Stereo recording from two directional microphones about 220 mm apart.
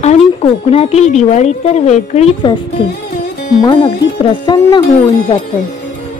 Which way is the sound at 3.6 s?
20° left (ahead or behind).